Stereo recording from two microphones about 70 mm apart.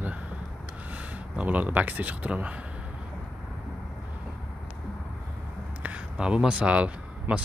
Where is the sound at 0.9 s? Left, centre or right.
Right.